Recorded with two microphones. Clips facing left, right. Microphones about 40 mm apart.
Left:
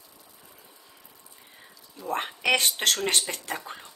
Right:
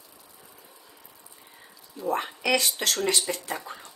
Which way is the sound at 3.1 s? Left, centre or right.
Left.